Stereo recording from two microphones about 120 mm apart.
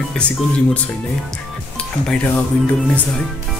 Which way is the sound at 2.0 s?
10° left (ahead or behind).